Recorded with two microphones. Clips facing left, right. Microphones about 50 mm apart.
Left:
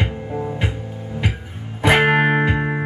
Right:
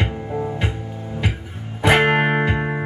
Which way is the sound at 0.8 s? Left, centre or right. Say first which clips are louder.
Even; right.